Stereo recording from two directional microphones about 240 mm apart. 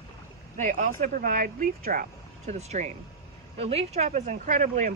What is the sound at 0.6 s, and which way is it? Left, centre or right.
Speech, right.